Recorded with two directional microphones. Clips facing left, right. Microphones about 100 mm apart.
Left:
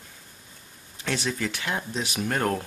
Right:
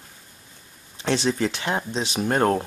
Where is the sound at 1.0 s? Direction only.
30° right (ahead or behind).